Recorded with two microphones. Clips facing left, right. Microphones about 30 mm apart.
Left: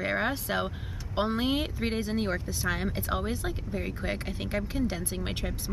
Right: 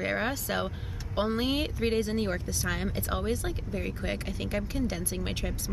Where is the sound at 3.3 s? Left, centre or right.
Centre.